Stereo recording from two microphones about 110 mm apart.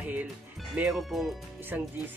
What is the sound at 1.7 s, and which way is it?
Speech, 15° right (ahead or behind).